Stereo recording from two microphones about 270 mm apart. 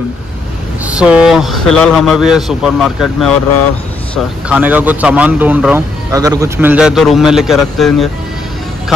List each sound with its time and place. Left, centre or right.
0.8 s speech: centre